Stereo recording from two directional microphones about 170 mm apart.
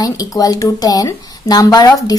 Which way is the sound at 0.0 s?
20° left (ahead or behind).